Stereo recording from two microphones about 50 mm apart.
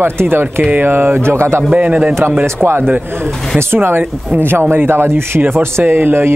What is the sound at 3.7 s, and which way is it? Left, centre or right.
Speech, right.